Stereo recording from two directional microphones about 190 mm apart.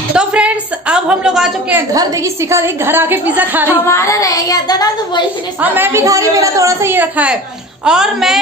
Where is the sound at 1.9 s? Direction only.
15° right (ahead or behind).